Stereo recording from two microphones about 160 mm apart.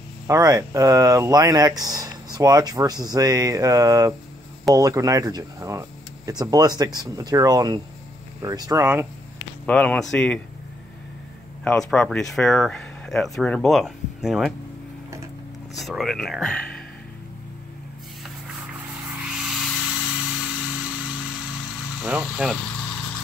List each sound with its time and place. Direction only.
0.3 s speech: 25° right (ahead or behind)
9.7 s speech: 5° left (ahead or behind)
11.6 s speech: 5° left (ahead or behind)
15.8 s speech: centre (ahead or behind)
19.2 s a sound: 5° right (ahead or behind)
22.0 s speech: 10° right (ahead or behind)